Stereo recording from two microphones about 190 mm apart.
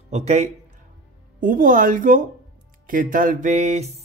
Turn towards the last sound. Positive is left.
turn(degrees=-35)  # may be behind; listen again after turning